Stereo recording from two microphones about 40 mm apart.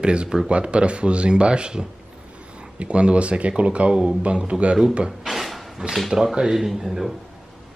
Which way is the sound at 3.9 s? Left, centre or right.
Centre.